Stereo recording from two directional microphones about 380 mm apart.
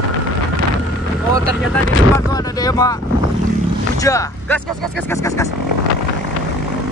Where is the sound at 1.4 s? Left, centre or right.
Right.